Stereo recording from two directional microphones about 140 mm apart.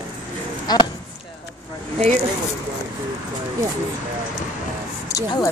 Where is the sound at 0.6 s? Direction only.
30° left (ahead or behind).